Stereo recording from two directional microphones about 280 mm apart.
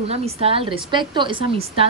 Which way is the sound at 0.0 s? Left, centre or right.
Right.